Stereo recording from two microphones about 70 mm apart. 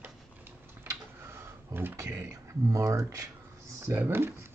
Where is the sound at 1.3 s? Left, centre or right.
Right.